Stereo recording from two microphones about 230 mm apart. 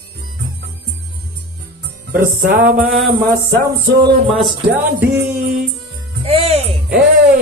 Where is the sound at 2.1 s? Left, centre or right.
Right.